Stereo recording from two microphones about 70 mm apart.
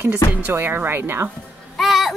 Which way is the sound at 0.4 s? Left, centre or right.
Right.